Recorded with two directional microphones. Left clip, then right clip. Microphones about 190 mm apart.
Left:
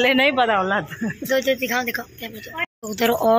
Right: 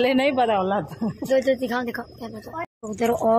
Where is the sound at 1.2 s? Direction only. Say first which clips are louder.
Even; 20° right (ahead or behind).